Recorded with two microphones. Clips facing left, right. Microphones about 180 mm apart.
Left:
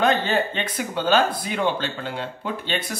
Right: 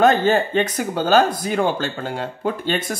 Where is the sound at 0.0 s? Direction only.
45° right (ahead or behind).